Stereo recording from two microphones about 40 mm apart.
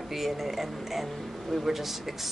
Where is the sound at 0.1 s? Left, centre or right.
Centre.